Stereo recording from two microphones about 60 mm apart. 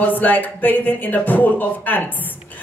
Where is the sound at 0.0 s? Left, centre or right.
Left.